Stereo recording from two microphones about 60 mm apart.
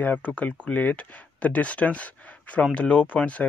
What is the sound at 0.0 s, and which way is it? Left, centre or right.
Speech, left.